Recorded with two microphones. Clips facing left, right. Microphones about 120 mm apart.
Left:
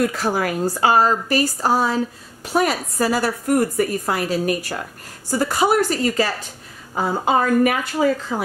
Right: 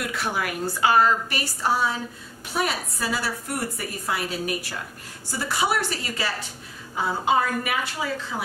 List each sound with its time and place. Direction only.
0.0 s a woman's voice: 40° left (ahead or behind)